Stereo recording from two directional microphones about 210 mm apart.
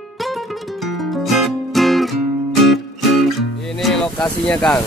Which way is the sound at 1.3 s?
Centre (ahead or behind).